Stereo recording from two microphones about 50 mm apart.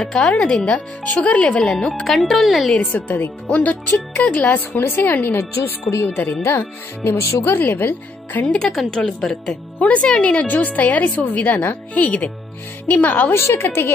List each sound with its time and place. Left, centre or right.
0.1 s speech: centre
0.7 s speech: left
1.6 s speech: centre
2.0 s speech: centre
2.9 s a woman's voice: left
3.4 s a woman's voice: left
5.6 s speech: left
7.1 s speech: left
7.4 s a woman's voice: left
8.6 s speech: centre
9.0 s speech: centre
9.8 s a woman's voice: left
13.3 s a woman's voice: left